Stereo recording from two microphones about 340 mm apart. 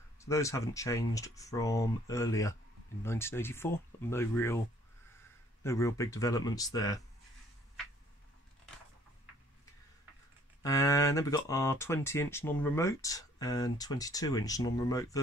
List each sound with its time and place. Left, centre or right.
0.2 s speech: centre
5.6 s speech: centre
10.6 s speech: centre